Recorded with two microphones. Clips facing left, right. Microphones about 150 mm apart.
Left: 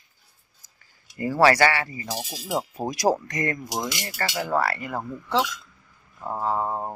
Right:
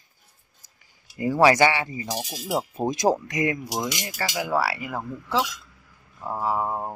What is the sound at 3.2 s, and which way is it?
Speech, 10° right (ahead or behind).